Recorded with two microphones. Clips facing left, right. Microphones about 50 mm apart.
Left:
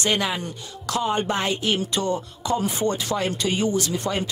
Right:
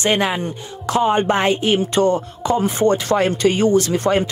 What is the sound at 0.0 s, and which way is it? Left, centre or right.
Speech, right.